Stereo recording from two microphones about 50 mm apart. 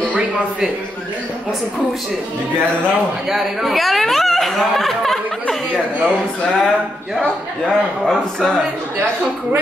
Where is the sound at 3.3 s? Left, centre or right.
Centre.